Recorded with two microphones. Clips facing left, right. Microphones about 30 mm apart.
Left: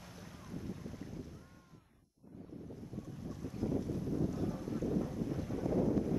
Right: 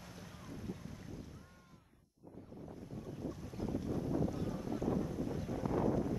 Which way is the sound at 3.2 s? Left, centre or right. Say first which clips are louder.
Left 3 dB; centre.